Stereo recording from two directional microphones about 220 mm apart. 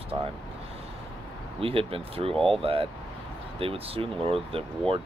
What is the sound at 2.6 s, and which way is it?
Speech, 25° right (ahead or behind).